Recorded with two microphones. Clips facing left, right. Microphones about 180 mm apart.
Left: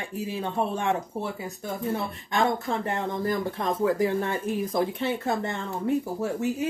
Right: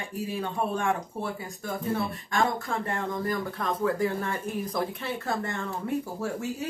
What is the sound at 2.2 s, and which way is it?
Speech, 20° left (ahead or behind).